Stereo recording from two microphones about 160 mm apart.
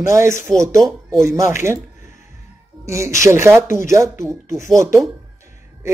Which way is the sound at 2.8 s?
20° right (ahead or behind).